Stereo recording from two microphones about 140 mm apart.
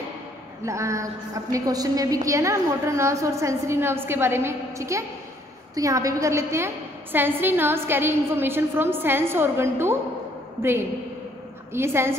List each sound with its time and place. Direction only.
0.7 s a woman's voice: 20° right (ahead or behind)